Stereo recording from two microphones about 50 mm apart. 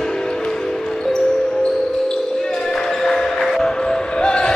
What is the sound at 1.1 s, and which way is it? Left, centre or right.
Music, centre.